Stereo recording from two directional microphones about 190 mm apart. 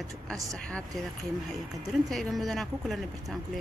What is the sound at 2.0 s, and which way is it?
Speech, centre (ahead or behind).